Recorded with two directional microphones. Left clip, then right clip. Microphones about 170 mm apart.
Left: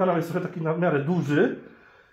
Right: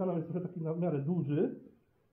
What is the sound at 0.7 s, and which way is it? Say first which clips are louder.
Speech: left 11 dB; 40° left (ahead or behind).